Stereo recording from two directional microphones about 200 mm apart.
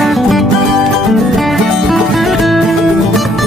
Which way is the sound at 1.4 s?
Centre (ahead or behind).